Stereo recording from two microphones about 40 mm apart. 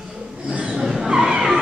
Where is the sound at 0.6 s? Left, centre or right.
Centre.